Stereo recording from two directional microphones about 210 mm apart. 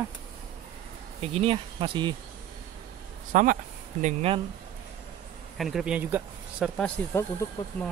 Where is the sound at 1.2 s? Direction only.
30° right (ahead or behind).